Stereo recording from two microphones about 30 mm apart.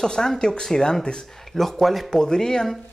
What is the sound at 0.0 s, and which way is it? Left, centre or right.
Speech, left.